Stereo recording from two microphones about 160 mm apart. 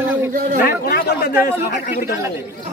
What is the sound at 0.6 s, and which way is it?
Speech, 65° left (ahead or behind).